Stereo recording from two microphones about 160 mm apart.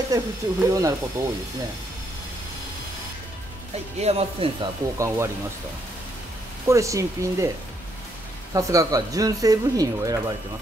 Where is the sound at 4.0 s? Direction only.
40° right (ahead or behind).